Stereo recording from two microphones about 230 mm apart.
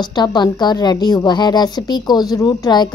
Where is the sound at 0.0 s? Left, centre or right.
Centre.